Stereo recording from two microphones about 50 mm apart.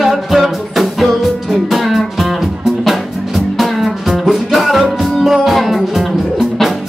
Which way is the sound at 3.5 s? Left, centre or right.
Centre.